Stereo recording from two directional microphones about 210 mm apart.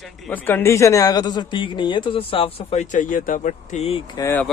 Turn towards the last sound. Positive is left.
turn(degrees=10)  # may be behind; listen again after turning